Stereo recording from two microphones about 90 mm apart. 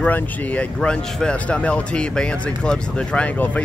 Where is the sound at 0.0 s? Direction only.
15° left (ahead or behind).